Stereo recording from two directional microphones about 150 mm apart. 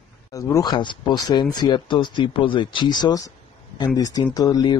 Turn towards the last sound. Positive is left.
turn(degrees=25)  # may be behind; listen again after turning